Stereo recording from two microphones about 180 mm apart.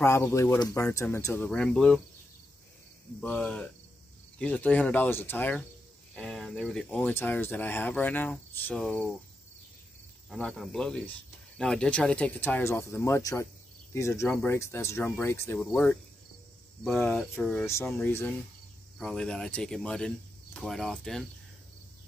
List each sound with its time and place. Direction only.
0.0 s speech: 15° left (ahead or behind)
3.2 s speech: 5° left (ahead or behind)
10.3 s speech: centre (ahead or behind)